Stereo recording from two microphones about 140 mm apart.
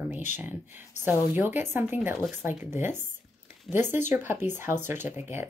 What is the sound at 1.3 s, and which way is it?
Speech, 15° right (ahead or behind).